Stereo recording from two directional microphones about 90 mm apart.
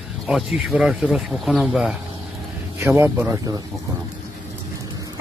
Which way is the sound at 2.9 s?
30° right (ahead or behind).